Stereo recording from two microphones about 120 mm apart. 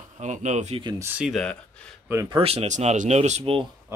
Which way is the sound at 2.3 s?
55° right (ahead or behind).